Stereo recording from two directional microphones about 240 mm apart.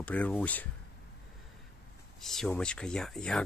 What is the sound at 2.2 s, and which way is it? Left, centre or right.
Speech, centre.